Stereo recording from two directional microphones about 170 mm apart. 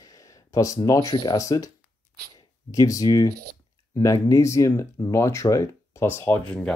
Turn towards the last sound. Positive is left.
turn(degrees=5)  # may be behind; listen again after turning